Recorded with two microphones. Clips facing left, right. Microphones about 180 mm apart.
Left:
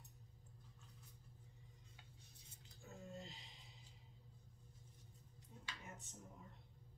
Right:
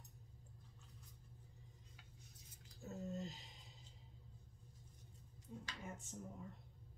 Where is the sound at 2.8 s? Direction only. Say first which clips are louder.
Right 7 dB; 40° right (ahead or behind).